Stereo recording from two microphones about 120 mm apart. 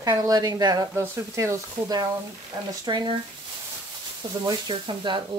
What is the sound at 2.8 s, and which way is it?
Speech, 40° right (ahead or behind).